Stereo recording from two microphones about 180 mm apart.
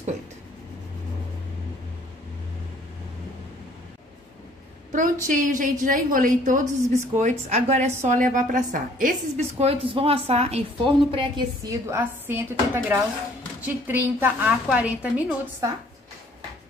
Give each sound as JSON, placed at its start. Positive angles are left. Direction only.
{"t": 4.9, "sound": "a woman's voice", "side_deg": -45}
{"t": 9.4, "sound": "a woman's voice", "side_deg": -35}